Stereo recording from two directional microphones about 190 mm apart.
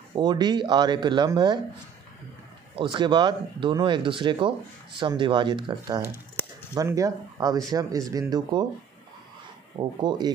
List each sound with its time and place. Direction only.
0.1 s speech: 25° right (ahead or behind)
2.7 s speech: 25° right (ahead or behind)
9.8 s speech: 20° right (ahead or behind)